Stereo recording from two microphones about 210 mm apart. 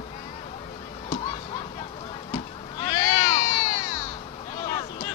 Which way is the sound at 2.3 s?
25° left (ahead or behind).